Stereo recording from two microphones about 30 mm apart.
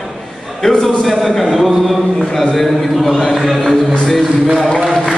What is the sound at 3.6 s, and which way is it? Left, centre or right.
A man's voice, left.